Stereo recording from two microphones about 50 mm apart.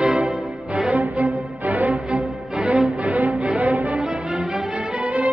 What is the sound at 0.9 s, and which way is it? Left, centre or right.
Music, right.